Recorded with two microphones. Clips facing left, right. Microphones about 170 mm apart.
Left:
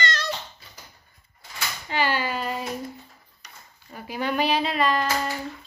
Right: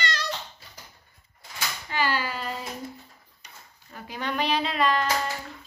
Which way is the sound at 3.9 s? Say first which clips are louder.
Left 4 dB; 10° left (ahead or behind).